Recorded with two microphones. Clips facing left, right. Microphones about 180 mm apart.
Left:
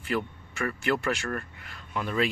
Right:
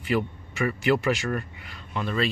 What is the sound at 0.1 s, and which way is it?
Speech, 5° right (ahead or behind).